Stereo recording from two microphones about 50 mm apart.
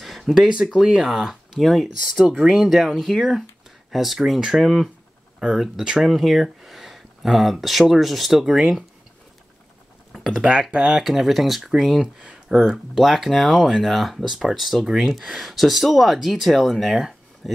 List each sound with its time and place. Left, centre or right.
0.0 s a sound: centre
0.7 s speech: centre
1.6 s speech: centre
3.0 s speech: centre
10.1 s computer keyboard: centre
10.4 s speech: centre